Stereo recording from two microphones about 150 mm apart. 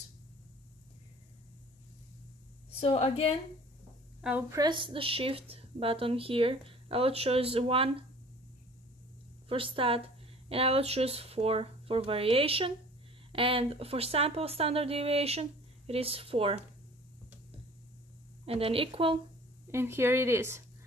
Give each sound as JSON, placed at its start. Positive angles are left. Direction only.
{"t": 2.8, "sound": "a woman's voice", "side_deg": 40}
{"t": 4.2, "sound": "a woman's voice", "side_deg": -10}
{"t": 4.5, "sound": "speech", "side_deg": -30}
{"t": 9.5, "sound": "speech", "side_deg": -40}
{"t": 18.4, "sound": "speech", "side_deg": -40}
{"t": 19.7, "sound": "speech", "side_deg": -15}